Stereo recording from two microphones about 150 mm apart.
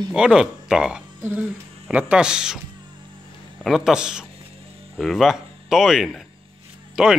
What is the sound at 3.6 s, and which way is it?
Speech, 5° right (ahead or behind).